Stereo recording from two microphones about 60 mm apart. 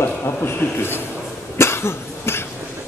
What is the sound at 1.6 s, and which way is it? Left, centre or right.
Cough, left.